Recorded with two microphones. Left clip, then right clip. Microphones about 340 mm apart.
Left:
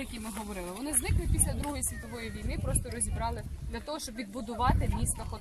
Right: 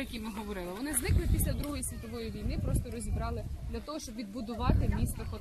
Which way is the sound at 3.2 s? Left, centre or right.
Left.